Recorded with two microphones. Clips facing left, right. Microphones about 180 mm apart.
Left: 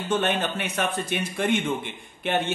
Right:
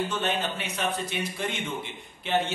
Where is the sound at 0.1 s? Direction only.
55° left (ahead or behind).